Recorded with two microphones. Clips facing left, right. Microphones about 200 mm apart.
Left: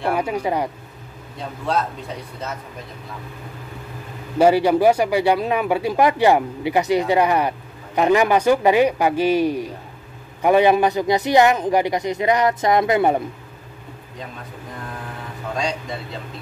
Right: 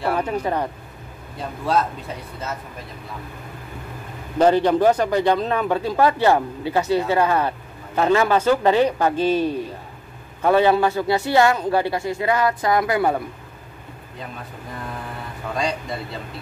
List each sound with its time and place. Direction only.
0.1 s speech: 10° left (ahead or behind)
4.4 s a man's voice: 10° left (ahead or behind)
15.5 s a man's voice: centre (ahead or behind)